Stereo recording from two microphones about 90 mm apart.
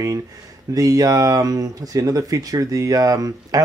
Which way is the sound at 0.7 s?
40° right (ahead or behind).